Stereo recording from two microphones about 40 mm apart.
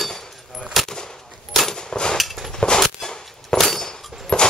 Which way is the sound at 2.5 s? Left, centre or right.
Centre.